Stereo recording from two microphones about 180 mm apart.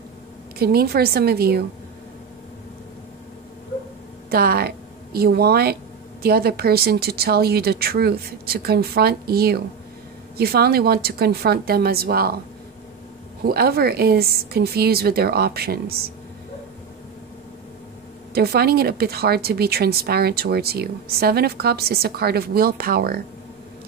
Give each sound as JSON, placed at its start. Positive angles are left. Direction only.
{"t": 0.6, "sound": "a woman's voice", "side_deg": -60}
{"t": 4.3, "sound": "a woman's voice", "side_deg": -60}
{"t": 13.4, "sound": "a woman's voice", "side_deg": -60}
{"t": 18.3, "sound": "a woman's voice", "side_deg": -60}